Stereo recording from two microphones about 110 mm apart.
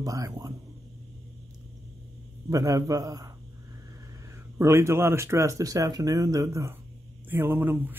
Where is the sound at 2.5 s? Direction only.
30° right (ahead or behind).